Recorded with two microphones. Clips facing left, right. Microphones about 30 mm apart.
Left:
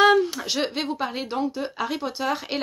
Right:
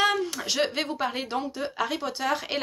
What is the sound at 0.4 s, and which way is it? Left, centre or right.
Speech, centre.